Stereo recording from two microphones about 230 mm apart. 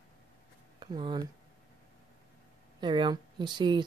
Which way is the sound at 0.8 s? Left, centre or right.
Centre.